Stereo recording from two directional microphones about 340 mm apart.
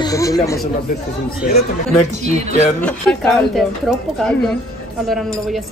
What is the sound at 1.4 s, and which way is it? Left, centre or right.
Speech, left.